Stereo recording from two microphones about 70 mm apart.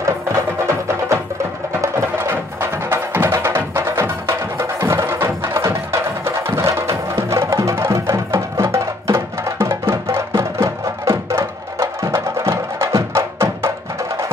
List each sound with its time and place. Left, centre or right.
0.0 s music: right
7.7 s music: right
11.8 s music: right